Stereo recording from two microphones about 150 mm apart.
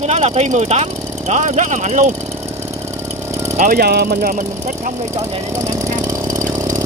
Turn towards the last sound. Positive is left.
turn(degrees=-25)  # may be behind; listen again after turning